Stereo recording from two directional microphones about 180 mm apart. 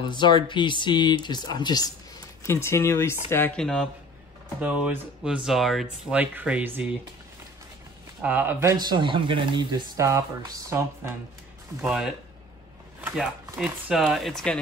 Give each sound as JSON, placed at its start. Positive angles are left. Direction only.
{"t": 0.0, "sound": "speech", "side_deg": 25}
{"t": 8.2, "sound": "speech", "side_deg": -10}